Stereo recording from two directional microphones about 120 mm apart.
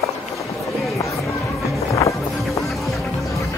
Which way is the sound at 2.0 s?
25° left (ahead or behind).